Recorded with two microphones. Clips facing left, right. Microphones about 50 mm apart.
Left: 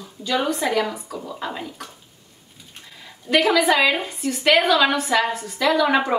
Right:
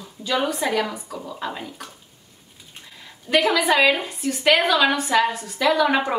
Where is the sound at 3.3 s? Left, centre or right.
Centre.